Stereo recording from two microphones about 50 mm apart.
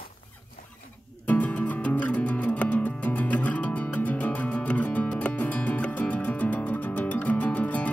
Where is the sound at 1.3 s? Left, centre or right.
Left.